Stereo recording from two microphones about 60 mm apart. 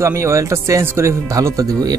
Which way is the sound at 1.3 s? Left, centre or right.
Right.